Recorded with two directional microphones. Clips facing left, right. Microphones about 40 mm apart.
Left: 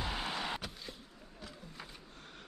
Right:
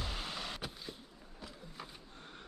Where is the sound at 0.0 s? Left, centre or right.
Centre.